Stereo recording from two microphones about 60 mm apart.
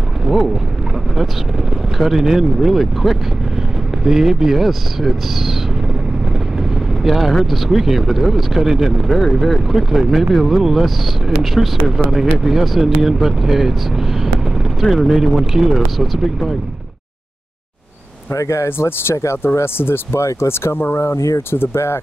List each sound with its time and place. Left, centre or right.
1.1 s speech: centre
7.0 s speech: centre
18.3 s speech: left
20.2 s speech: left